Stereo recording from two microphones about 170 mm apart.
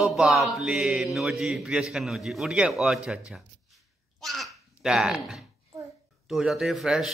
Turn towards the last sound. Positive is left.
turn(degrees=0)  # may be behind; listen again after turning